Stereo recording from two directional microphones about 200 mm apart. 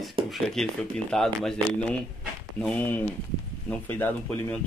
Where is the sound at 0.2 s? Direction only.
25° right (ahead or behind).